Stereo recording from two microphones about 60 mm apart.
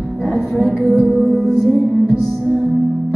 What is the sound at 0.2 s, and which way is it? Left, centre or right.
Music, centre.